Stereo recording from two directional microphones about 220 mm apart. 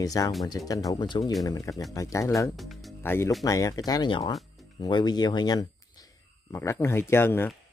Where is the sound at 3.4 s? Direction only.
15° left (ahead or behind).